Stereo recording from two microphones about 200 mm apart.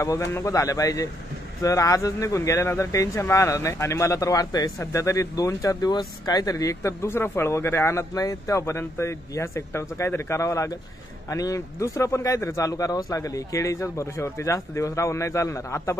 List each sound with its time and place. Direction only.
0.0 s speech: 15° left (ahead or behind)